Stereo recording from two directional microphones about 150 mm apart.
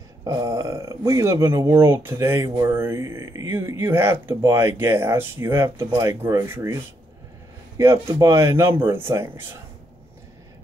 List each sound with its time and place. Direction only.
0.2 s speech: 25° right (ahead or behind)